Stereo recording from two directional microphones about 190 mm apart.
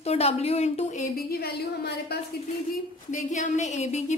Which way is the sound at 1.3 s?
55° left (ahead or behind).